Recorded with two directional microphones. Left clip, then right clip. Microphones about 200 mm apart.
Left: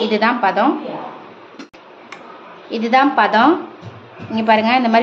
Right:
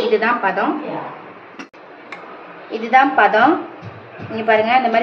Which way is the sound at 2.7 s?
55° left (ahead or behind).